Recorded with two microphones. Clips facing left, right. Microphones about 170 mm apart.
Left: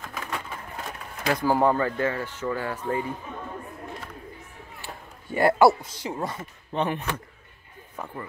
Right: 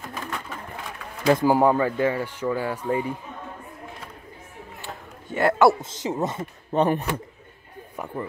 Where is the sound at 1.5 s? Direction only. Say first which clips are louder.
Left 1 dB; 10° right (ahead or behind).